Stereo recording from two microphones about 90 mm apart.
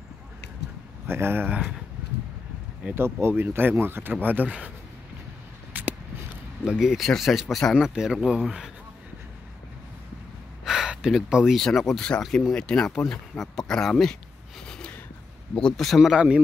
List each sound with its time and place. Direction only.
1.0 s speech: 25° right (ahead or behind)
2.9 s speech: 25° right (ahead or behind)
5.7 s a sound: 20° right (ahead or behind)
6.6 s speech: 5° right (ahead or behind)
7.8 s speech: 5° right (ahead or behind)
10.6 s gasp: 5° right (ahead or behind)
11.6 s speech: 5° left (ahead or behind)
15.5 s speech: 5° left (ahead or behind); by 16.4 s 10° right (ahead or behind)